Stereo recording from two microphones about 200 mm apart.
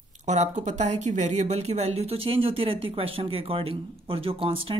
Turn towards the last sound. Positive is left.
turn(degrees=-25)  # may be behind; listen again after turning